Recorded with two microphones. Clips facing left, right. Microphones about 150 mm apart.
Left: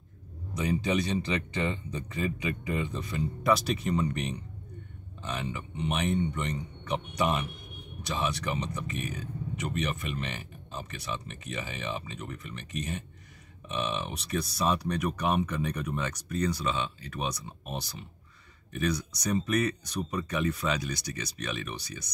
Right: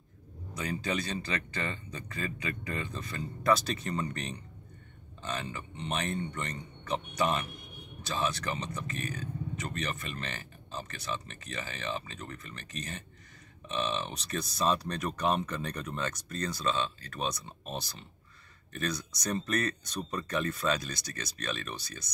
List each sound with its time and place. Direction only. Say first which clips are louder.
0.6 s speech: left 5 dB; 15° left (ahead or behind)